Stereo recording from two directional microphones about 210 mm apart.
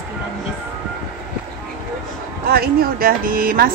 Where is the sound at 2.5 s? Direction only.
45° right (ahead or behind).